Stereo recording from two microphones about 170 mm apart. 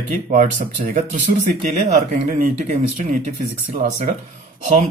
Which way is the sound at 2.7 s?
45° right (ahead or behind).